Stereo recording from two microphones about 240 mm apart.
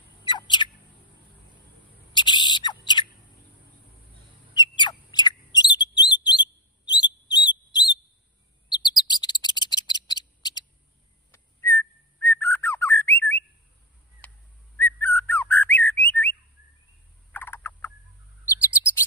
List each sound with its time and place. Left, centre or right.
0.2 s bird: centre
2.1 s owl: centre
4.6 s bird: centre
10.0 s a sound: centre
11.3 s whistle: centre
12.4 s bird: centre
14.2 s a sound: centre
14.9 s bird: centre
17.3 s frog: centre